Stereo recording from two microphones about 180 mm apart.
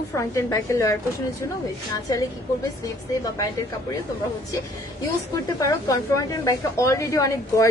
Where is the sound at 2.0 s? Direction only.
20° left (ahead or behind).